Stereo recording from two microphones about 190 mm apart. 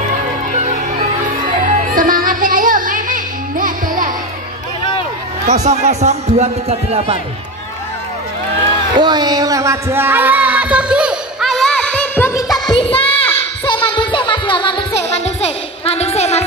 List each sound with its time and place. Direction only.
0.5 s music: 40° right (ahead or behind)
5.4 s speech: 35° right (ahead or behind)
8.9 s a sound: 20° right (ahead or behind); by 12.5 s 15° left (ahead or behind)
12.7 s music: 30° left (ahead or behind)